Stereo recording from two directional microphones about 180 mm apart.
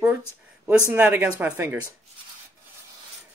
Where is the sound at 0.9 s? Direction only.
5° right (ahead or behind).